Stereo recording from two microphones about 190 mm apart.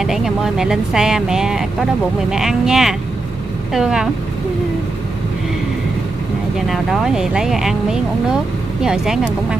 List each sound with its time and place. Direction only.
0.0 s speech: centre (ahead or behind)
6.7 s speech: centre (ahead or behind)